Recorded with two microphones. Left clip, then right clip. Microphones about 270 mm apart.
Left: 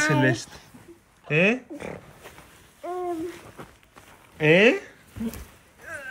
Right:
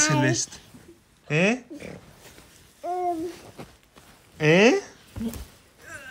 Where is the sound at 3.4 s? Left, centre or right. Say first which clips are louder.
Even; centre.